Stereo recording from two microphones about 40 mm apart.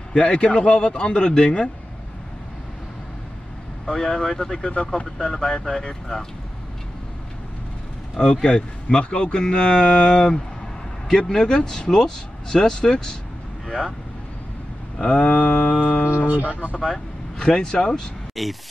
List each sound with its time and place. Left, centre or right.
0.1 s speech: left
3.8 s speech: centre
4.6 s speech: left
8.2 s speech: left
15.0 s speech: centre
15.7 s music: left
16.3 s speech: right
17.4 s speech: left
18.3 s speech: centre